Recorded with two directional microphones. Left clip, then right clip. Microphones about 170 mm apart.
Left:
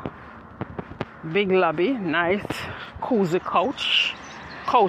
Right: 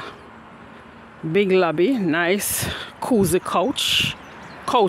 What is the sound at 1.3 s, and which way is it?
Speech, 75° right (ahead or behind).